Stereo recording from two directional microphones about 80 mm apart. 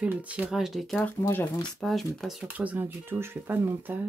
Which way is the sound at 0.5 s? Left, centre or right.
Centre.